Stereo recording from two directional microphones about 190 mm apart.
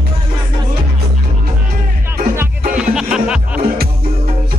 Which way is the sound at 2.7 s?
5° right (ahead or behind).